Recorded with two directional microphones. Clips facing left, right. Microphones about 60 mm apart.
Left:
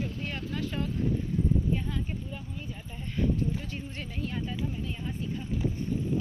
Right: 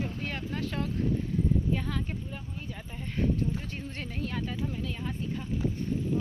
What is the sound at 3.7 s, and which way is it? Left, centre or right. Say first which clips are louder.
Speech: right 1 dB; right.